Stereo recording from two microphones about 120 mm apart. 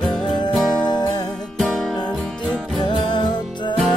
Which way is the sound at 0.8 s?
35° left (ahead or behind).